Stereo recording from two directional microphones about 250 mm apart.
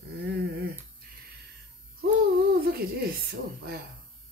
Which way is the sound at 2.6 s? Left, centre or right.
Right.